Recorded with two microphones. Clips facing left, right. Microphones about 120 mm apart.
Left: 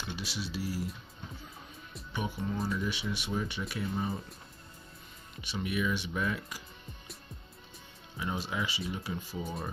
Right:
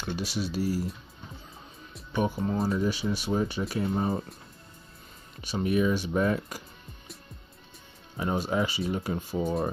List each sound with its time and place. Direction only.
0.0 s speech: 45° right (ahead or behind)
2.1 s speech: 45° right (ahead or behind)
5.4 s speech: 40° right (ahead or behind)
8.2 s speech: 45° right (ahead or behind)